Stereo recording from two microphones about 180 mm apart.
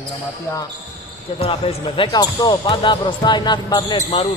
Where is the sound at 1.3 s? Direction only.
30° left (ahead or behind).